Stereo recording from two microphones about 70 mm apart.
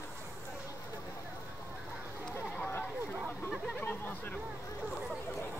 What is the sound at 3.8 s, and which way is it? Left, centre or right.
Hubbub, left.